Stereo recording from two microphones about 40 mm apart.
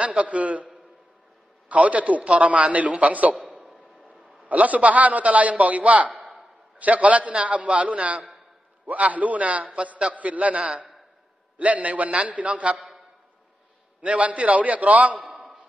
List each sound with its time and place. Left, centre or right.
0.0 s a man's voice: right
1.7 s a man's voice: right
14.0 s a man's voice: right